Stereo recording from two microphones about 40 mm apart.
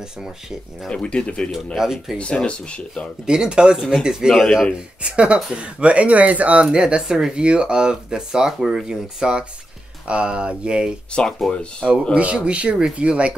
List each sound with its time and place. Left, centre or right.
0.9 s speech: left
1.8 s speech: centre
3.3 s speech: right
4.3 s speech: centre
4.7 s speech: right
6.7 s speech: centre
10.0 s speech: right
11.2 s speech: left
11.8 s speech: right